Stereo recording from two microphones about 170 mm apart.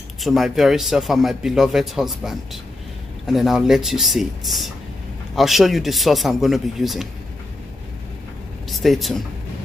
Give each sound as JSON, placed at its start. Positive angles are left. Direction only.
{"t": 0.2, "sound": "a man's voice", "side_deg": 0}
{"t": 8.6, "sound": "speech", "side_deg": 0}